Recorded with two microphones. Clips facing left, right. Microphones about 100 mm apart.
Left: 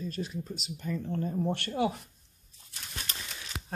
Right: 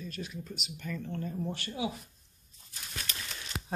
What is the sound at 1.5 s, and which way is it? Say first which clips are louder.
Speech: left 6 dB; 55° left (ahead or behind).